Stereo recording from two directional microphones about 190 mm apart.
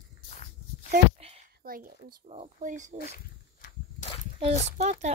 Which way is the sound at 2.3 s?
35° right (ahead or behind).